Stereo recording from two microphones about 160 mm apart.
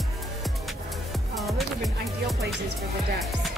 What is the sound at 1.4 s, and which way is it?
Music, centre (ahead or behind).